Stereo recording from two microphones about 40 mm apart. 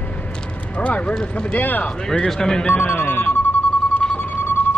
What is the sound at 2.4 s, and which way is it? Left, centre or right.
Speech, centre.